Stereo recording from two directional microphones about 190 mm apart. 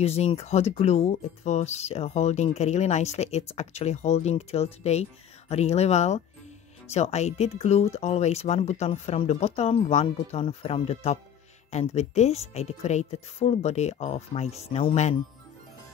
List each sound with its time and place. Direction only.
0.0 s speech: 35° left (ahead or behind)